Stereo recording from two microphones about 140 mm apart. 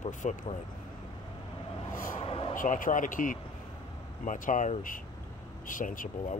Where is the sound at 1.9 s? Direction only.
80° left.